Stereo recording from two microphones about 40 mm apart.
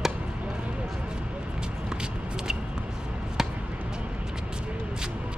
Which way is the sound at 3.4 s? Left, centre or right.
Centre.